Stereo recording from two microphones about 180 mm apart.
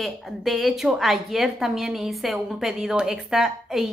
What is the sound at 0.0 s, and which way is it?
A woman's voice, centre (ahead or behind).